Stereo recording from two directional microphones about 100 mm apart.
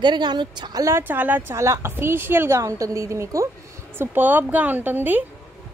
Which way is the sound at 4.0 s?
20° right (ahead or behind).